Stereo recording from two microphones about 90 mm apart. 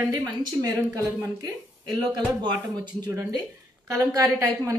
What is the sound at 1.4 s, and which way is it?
Speech, 45° right (ahead or behind).